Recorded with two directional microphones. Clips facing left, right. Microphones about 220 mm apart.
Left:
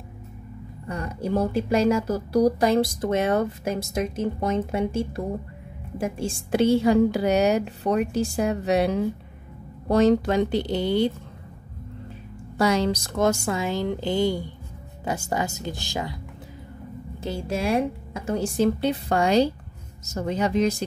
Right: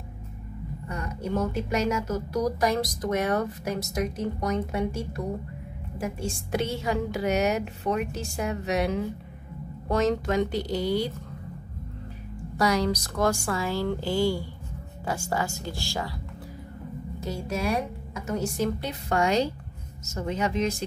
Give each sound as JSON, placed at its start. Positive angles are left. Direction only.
{"t": 0.8, "sound": "a woman's voice", "side_deg": 30}
{"t": 12.5, "sound": "speech", "side_deg": 25}
{"t": 17.2, "sound": "a woman's voice", "side_deg": 30}